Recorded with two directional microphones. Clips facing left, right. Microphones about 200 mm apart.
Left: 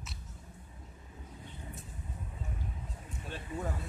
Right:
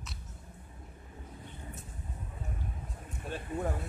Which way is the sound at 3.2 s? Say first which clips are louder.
Right 4 dB; 50° right (ahead or behind).